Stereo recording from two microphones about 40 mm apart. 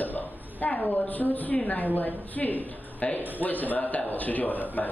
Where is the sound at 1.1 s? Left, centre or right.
Left.